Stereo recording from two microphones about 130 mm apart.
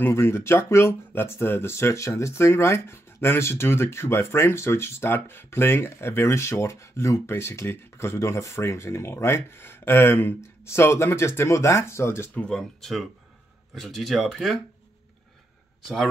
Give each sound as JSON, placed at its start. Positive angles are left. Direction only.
{"t": 0.0, "sound": "speech", "side_deg": 20}
{"t": 12.4, "sound": "speech", "side_deg": 5}